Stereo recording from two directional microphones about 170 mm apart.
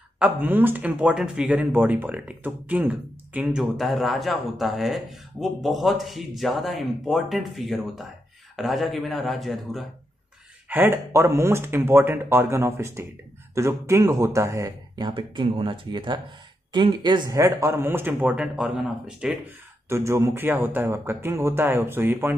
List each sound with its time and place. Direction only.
0.2 s speech: 10° right (ahead or behind)
10.7 s speech: 15° right (ahead or behind)
19.9 s speech: 15° right (ahead or behind)